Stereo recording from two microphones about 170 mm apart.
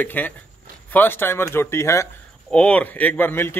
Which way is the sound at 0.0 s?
10° left (ahead or behind).